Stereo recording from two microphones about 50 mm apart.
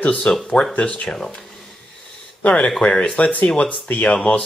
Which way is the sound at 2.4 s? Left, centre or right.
Left.